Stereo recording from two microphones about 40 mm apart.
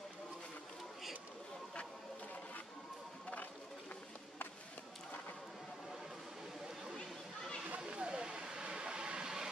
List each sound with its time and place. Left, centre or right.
7.8 s vehicle: centre